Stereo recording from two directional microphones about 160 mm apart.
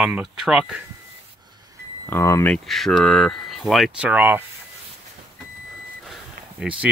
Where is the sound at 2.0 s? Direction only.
20° left (ahead or behind).